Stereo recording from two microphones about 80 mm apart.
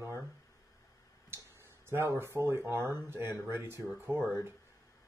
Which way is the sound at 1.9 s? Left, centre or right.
Right.